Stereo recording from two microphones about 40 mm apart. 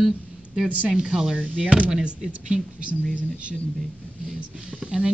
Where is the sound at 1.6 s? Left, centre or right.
Right.